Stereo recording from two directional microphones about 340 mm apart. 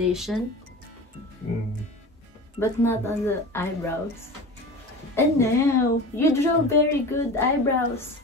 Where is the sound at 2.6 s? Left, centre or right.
Centre.